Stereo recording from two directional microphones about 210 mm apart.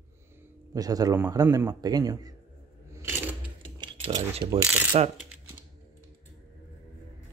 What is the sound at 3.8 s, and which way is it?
Mechanisms, 25° right (ahead or behind).